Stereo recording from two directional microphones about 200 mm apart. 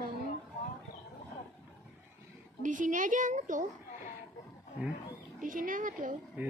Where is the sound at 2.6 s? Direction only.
40° right (ahead or behind).